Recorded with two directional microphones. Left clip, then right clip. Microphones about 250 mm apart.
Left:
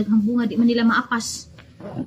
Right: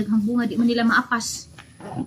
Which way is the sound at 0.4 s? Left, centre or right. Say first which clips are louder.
Even; centre.